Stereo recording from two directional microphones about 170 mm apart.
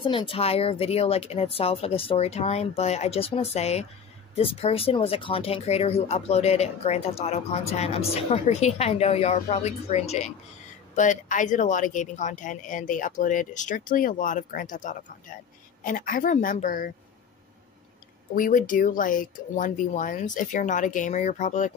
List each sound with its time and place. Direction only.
0.0 s speech: 30° left (ahead or behind); by 16.9 s 50° left (ahead or behind)
18.3 s speech: 50° left (ahead or behind)